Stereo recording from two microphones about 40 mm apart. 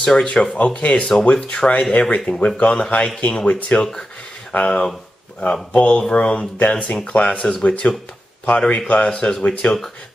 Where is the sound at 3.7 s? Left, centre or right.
Left.